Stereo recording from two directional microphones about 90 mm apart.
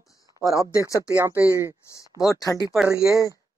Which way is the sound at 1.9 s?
35° left (ahead or behind).